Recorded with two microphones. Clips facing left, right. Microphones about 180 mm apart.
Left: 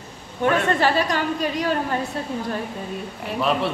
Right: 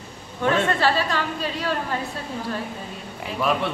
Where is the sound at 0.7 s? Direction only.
15° left (ahead or behind).